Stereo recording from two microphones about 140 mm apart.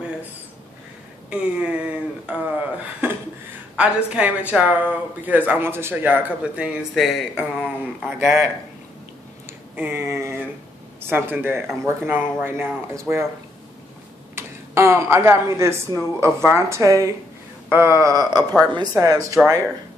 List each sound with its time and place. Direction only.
1.3 s speech: 10° right (ahead or behind)
3.7 s speech: 5° right (ahead or behind)
9.8 s speech: 15° right (ahead or behind)
14.3 s speech: 20° right (ahead or behind)